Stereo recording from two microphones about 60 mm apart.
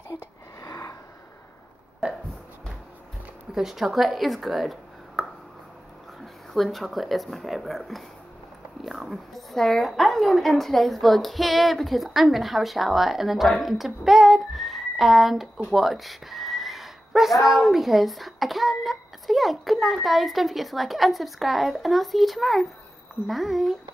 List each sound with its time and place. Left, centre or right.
0.1 s a sound: left
3.5 s speech: centre
6.2 s speech: centre